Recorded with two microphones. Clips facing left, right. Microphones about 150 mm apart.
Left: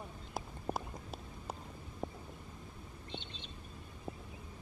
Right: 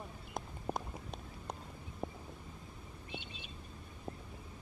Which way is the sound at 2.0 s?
10° right (ahead or behind).